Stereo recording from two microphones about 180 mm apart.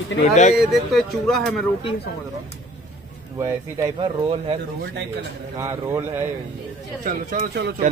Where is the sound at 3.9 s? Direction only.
30° right (ahead or behind).